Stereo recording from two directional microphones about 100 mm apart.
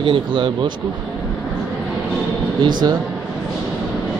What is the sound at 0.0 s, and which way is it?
Speech, 60° right (ahead or behind).